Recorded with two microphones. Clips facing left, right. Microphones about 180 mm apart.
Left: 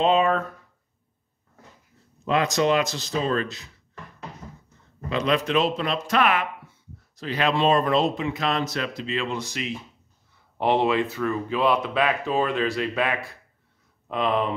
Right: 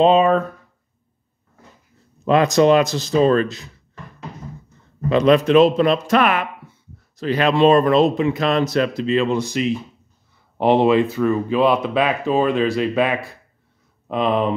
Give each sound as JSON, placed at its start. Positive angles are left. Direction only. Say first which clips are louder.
{"t": 0.0, "sound": "speech", "louder": "right 6 dB", "side_deg": -30}
{"t": 2.2, "sound": "speech", "louder": "right 8 dB", "side_deg": -45}
{"t": 3.2, "sound": "speech", "louder": "right 10 dB", "side_deg": -55}
{"t": 5.1, "sound": "speech", "louder": "right 9 dB", "side_deg": -45}
{"t": 10.8, "sound": "speech", "louder": "right 7 dB", "side_deg": -30}